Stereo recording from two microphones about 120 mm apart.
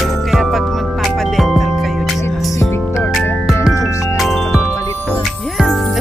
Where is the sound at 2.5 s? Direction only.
25° left (ahead or behind).